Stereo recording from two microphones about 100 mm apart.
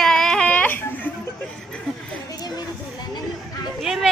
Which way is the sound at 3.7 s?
Centre (ahead or behind).